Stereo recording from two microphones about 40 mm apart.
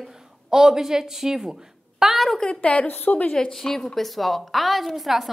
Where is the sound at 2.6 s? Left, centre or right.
Left.